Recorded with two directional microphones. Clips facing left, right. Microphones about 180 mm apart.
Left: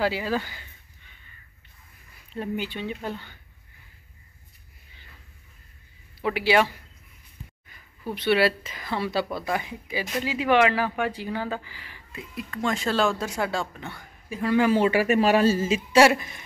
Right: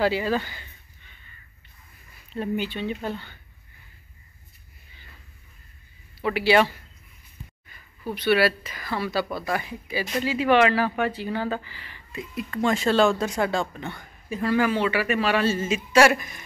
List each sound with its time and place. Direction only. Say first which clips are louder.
0.0 s speech: right 3 dB; 10° left (ahead or behind)
2.3 s speech: right 3 dB; 10° left (ahead or behind)
6.2 s speech: right 2 dB; 10° left (ahead or behind)
8.1 s a woman's voice: right 1 dB; 25° left (ahead or behind); by 14.5 s 5° left (ahead or behind)
14.7 s speech: left 3 dB; 45° left (ahead or behind); by 16.4 s 25° left (ahead or behind)